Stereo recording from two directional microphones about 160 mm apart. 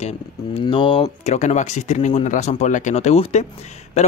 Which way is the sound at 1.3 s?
45° left (ahead or behind).